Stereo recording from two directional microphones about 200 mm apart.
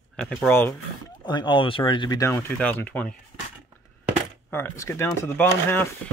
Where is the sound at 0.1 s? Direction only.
Centre (ahead or behind).